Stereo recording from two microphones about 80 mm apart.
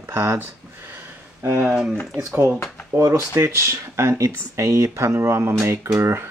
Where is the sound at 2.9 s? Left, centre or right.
Right.